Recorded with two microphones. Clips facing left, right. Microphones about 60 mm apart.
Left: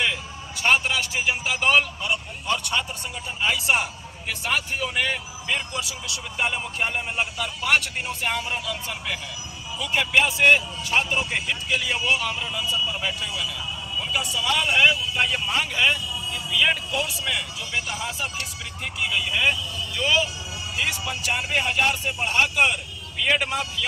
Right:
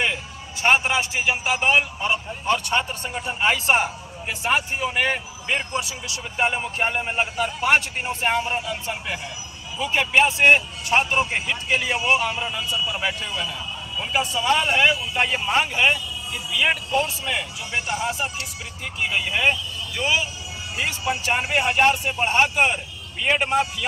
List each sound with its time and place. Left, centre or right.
0.0 s a man's voice: right
13.0 s speech: right
20.0 s a man's voice: right
20.7 s a man's voice: right